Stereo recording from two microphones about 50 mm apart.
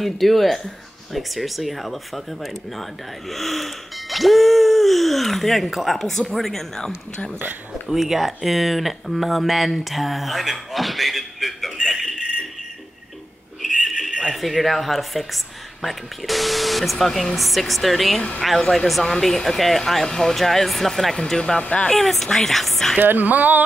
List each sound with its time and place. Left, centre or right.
0.0 s speech: centre
7.9 s speech: centre
13.6 s a sound: centre
14.3 s speech: centre
21.4 s speech: centre
21.8 s speech: centre
22.9 s speech: right